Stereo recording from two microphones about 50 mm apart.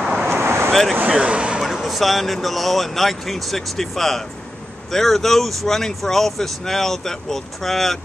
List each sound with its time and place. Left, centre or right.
0.3 s vehicle: right
0.7 s vehicle: centre
1.0 s speech: right
1.6 s speech: centre